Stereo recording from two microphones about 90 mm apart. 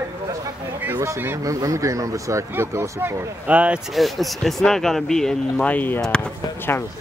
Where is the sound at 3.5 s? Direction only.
15° right (ahead or behind).